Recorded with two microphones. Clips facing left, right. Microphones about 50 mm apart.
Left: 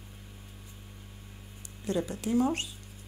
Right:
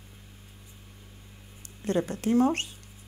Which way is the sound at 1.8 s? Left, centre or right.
Right.